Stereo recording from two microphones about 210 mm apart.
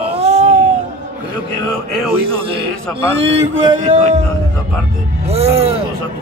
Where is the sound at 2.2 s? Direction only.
25° right (ahead or behind).